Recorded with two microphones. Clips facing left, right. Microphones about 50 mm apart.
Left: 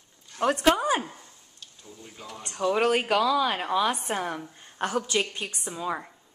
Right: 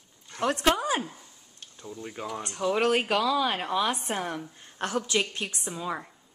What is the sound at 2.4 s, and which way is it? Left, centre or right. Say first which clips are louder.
A woman's voice: left 2 dB; centre.